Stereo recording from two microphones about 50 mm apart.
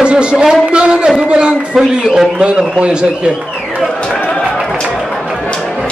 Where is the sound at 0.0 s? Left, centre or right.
Centre.